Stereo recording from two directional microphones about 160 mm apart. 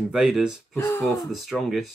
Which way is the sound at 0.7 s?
15° left (ahead or behind).